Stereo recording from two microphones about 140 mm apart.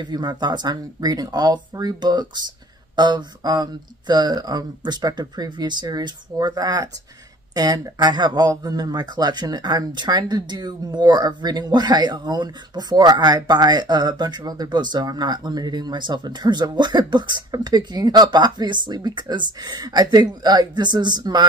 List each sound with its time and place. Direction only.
0.0 s speech: 30° right (ahead or behind)